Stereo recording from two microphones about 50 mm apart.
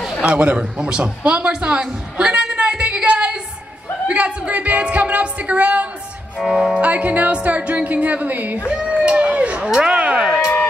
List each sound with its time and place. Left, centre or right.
0.2 s a man's voice: right
1.0 s a sound: right
4.1 s speech: right
6.4 s speech: centre
6.8 s speech: right
8.6 s a sound: right